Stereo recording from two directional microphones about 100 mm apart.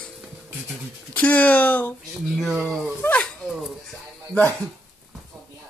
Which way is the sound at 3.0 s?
15° left (ahead or behind).